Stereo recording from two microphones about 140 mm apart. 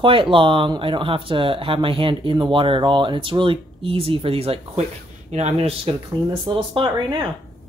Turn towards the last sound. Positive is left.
turn(degrees=-35)  # may be behind; listen again after turning